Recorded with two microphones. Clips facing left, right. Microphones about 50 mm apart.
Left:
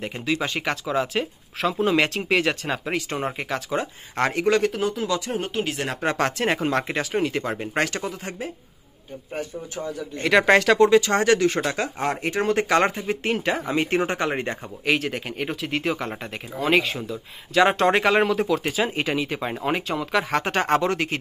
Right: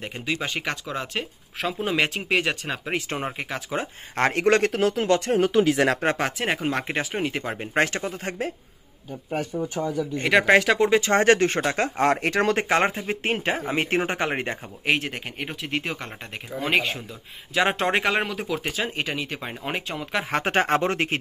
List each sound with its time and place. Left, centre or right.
0.0 s speech: centre
3.7 s speech: right
4.3 s speech: right
6.1 s speech: centre
6.9 s speech: right
7.7 s speech: right
10.3 s speech: centre
10.9 s speech: right
12.0 s speech: right
12.6 s speech: right
14.9 s speech: centre
20.3 s speech: right